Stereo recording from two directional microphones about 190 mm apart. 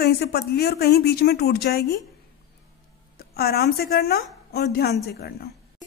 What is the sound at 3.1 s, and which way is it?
A woman's voice, 55° left (ahead or behind).